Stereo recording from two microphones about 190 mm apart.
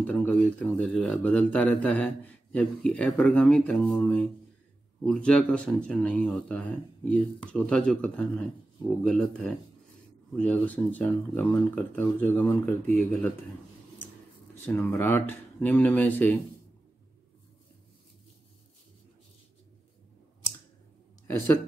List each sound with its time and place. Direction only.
0.0 s speech: 10° left (ahead or behind)
14.8 s speech: 10° left (ahead or behind)